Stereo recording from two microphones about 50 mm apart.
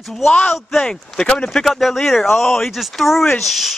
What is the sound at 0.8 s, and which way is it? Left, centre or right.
Speech, centre.